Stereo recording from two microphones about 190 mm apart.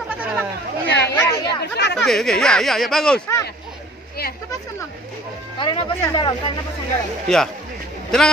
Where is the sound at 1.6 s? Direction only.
65° left (ahead or behind).